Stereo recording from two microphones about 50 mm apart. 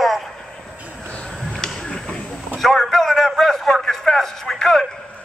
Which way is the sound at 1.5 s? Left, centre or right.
Centre.